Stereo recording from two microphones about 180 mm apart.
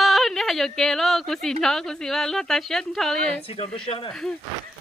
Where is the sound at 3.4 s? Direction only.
30° left (ahead or behind).